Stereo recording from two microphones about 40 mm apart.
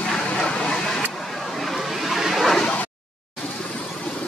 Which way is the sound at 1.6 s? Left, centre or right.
Centre.